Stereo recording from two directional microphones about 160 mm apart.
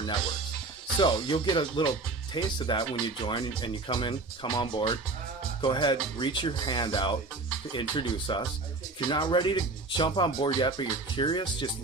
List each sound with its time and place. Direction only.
0.9 s speech: 30° left (ahead or behind)